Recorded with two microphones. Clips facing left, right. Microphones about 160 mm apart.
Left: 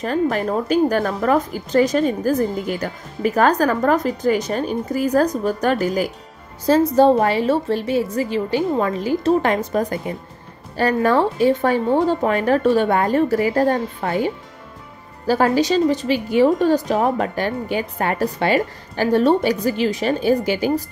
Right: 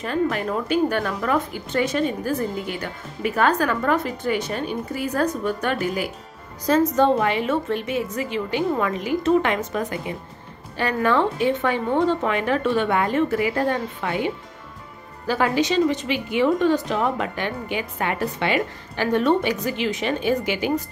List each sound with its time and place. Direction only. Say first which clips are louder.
0.0 s speech: left 3 dB; 40° left (ahead or behind)